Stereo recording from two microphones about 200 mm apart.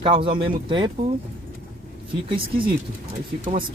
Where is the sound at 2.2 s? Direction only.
25° right (ahead or behind).